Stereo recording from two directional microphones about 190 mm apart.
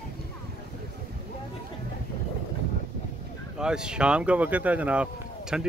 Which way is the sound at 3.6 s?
5° right (ahead or behind).